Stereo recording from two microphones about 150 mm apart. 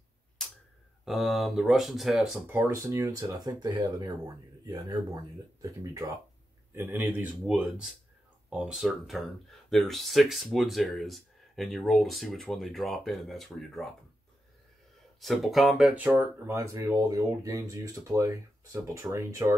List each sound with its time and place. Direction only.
1.0 s speech: centre (ahead or behind)
15.1 s speech: centre (ahead or behind); by 19.5 s 20° right (ahead or behind)